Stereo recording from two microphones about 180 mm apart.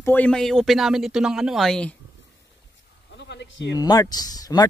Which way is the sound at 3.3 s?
80° left.